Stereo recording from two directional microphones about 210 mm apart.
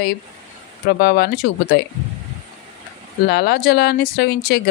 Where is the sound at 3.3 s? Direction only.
50° left (ahead or behind).